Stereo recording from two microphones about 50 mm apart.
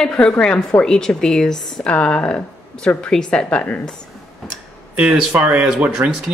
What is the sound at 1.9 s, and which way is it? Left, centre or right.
A woman's voice, left.